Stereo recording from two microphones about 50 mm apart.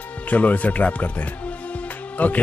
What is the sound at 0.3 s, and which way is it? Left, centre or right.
Speech, left.